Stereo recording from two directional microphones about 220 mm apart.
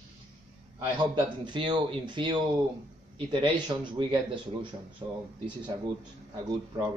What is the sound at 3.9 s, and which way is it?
Speech, 20° right (ahead or behind).